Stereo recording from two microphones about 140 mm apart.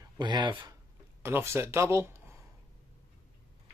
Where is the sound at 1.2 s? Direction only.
20° right (ahead or behind).